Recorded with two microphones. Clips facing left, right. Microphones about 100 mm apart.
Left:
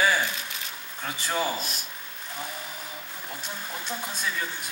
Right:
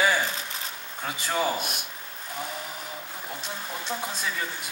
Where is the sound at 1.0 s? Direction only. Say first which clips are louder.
Right 1 dB; 15° right (ahead or behind).